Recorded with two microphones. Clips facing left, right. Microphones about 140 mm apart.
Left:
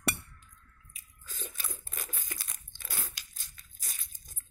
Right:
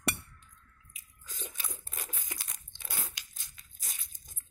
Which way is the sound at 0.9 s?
20° right (ahead or behind).